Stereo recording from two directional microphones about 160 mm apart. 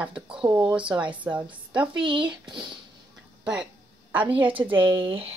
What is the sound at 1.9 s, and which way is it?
Speech, 30° right (ahead or behind).